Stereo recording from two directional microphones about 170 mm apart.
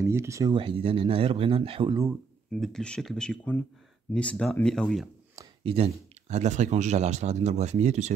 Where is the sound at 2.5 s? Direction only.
5° left (ahead or behind).